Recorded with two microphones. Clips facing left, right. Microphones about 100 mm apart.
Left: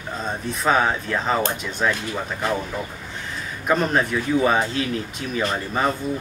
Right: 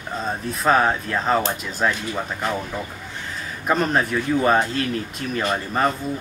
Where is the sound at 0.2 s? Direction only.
Centre (ahead or behind).